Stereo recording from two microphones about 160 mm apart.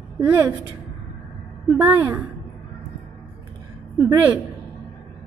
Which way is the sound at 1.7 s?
15° right (ahead or behind).